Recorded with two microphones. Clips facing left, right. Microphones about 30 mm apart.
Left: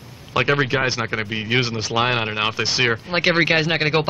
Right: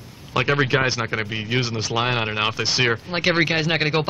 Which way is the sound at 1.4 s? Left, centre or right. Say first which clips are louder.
Left 6 dB; centre.